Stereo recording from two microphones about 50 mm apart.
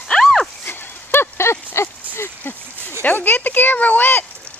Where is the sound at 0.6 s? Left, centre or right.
Left.